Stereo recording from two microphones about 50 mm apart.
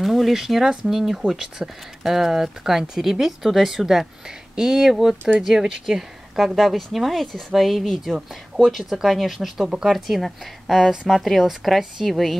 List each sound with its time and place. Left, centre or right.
0.0 s speech: centre